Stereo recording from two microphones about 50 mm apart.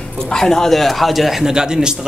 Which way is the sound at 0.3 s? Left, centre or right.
Centre.